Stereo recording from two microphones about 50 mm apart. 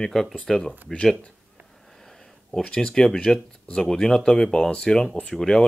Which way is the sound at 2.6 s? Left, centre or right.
Centre.